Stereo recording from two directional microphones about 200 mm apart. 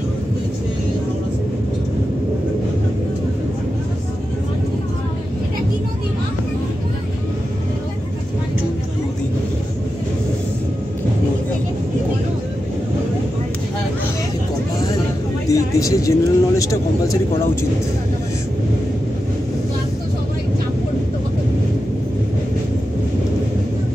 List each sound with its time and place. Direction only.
15.5 s speech: 15° left (ahead or behind)